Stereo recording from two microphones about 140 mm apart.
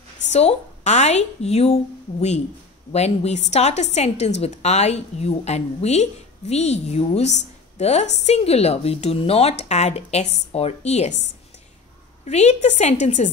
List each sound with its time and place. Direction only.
0.3 s a woman's voice: 50° left (ahead or behind)
12.3 s a woman's voice: 55° left (ahead or behind)